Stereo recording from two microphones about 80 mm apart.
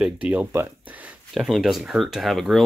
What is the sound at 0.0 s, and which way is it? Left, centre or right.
Speech, centre.